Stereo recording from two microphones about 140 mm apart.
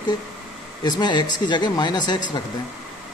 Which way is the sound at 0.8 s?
30° left (ahead or behind).